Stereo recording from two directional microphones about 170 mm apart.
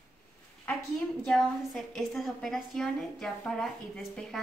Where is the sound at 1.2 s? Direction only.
Centre (ahead or behind).